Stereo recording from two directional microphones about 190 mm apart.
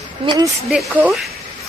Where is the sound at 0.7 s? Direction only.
Centre (ahead or behind).